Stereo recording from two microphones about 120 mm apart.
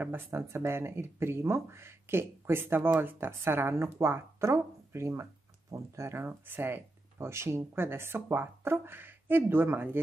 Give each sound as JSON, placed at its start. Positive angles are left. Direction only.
{"t": 0.0, "sound": "speech", "side_deg": -20}